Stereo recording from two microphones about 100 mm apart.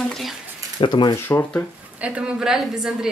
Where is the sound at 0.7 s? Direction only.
50° left (ahead or behind).